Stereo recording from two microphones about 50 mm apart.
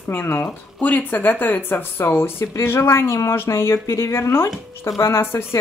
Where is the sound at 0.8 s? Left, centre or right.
Left.